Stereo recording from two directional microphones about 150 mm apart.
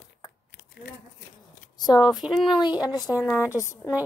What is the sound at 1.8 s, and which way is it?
Speech, 25° left (ahead or behind).